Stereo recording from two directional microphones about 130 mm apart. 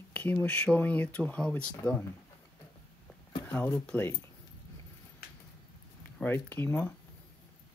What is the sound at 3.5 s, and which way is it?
Speech, 15° left (ahead or behind).